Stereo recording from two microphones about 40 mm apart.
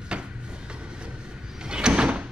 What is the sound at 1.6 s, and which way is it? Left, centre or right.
Door, right.